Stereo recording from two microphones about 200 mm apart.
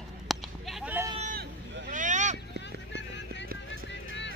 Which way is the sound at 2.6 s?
60° left (ahead or behind).